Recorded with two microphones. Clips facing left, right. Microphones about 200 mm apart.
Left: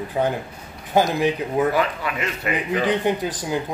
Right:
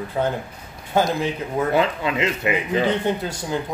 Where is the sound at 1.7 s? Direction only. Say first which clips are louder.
Right 3 dB; 20° right (ahead or behind).